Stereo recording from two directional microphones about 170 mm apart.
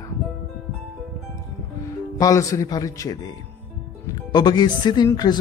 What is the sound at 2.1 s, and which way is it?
Speech, 20° left (ahead or behind).